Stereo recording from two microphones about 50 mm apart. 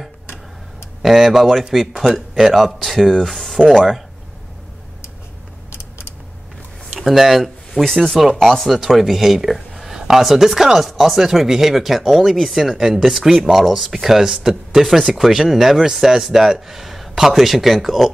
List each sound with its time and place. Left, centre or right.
1.0 s speech: centre
5.7 s a sound: left
7.0 s speech: centre